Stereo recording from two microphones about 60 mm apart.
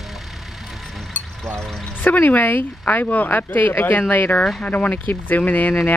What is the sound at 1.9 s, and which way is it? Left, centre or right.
Speech, left.